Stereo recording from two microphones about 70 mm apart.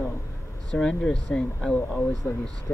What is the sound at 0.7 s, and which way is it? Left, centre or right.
Speech, centre.